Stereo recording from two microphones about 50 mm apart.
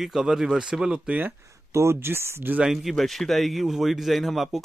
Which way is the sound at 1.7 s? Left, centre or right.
Right.